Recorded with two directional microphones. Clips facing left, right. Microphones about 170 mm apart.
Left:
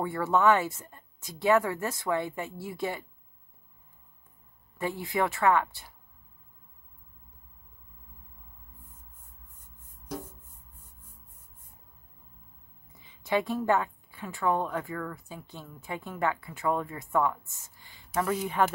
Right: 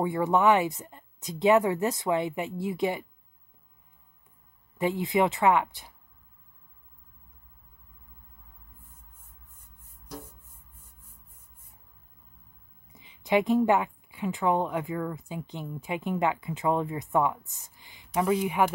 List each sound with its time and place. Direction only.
0.0 s a woman's voice: 15° right (ahead or behind)
4.7 s a woman's voice: 20° right (ahead or behind)
12.9 s a woman's voice: 15° right (ahead or behind)